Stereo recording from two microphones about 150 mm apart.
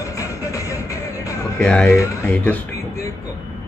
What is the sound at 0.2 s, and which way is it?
Music, 20° left (ahead or behind).